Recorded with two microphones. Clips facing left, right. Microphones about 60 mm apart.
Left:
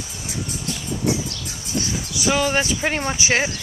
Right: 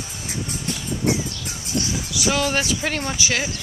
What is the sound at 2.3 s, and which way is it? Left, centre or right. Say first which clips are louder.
Speech: left 3 dB; centre.